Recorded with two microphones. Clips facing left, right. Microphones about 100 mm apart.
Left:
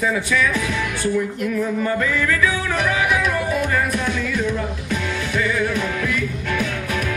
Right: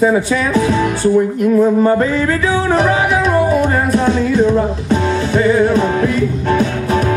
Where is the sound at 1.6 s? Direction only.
35° right (ahead or behind).